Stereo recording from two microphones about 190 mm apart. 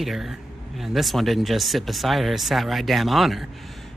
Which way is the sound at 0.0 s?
Centre (ahead or behind).